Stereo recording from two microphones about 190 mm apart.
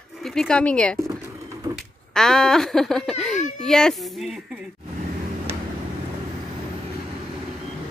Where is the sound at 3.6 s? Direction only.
5° left (ahead or behind).